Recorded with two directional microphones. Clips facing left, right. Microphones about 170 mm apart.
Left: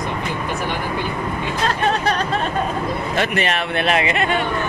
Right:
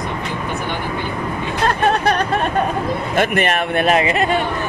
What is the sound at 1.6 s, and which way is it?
Speech, 55° right (ahead or behind).